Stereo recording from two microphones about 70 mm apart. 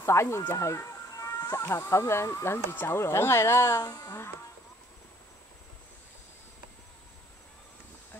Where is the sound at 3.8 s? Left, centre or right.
Left.